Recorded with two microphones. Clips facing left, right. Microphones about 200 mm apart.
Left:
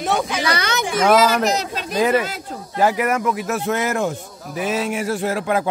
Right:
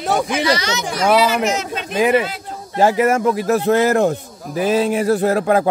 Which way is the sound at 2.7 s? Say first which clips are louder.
Right 4 dB; 25° right (ahead or behind).